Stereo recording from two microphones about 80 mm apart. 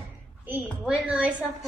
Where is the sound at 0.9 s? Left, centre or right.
Centre.